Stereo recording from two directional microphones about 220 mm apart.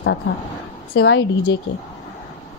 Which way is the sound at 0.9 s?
55° left (ahead or behind).